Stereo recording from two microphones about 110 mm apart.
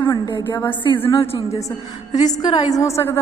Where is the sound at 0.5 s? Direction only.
15° left (ahead or behind).